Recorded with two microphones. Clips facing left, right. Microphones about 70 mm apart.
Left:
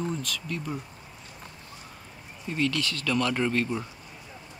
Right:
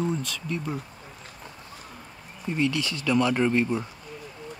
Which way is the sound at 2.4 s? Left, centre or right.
Centre.